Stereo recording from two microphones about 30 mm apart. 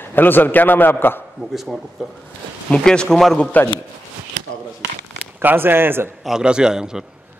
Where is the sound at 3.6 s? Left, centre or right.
Left.